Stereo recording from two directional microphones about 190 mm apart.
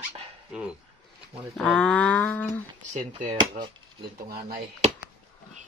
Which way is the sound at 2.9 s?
40° right (ahead or behind).